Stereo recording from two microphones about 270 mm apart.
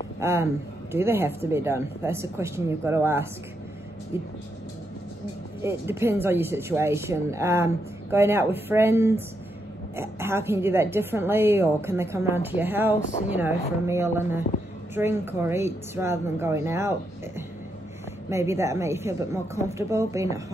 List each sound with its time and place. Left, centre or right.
0.2 s speech: centre
5.6 s speech: centre
18.3 s speech: centre